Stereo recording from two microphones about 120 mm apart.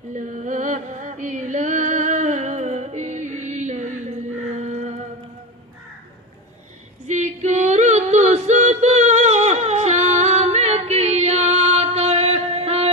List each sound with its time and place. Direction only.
0.1 s music: 90° right
4.6 s a sound: 70° right (ahead or behind)
7.1 s female singing: 75° right (ahead or behind); by 12.9 s 55° right (ahead or behind)